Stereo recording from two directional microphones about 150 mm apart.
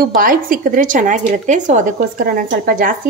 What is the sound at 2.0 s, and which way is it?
Speech, 75° right (ahead or behind).